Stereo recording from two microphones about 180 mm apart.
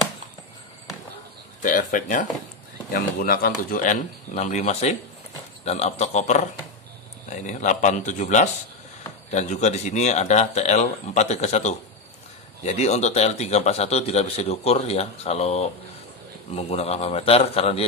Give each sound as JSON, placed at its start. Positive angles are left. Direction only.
{"t": 1.6, "sound": "a man's voice", "side_deg": 50}